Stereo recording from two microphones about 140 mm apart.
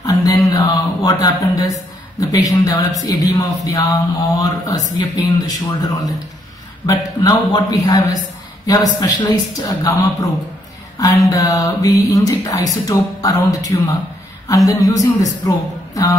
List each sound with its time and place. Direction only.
0.0 s music: 25° left (ahead or behind)
0.5 s speech: 25° left (ahead or behind)